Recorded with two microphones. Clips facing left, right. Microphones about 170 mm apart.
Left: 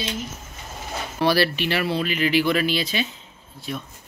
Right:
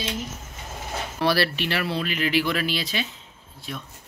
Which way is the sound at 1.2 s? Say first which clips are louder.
Left 3 dB; centre (ahead or behind).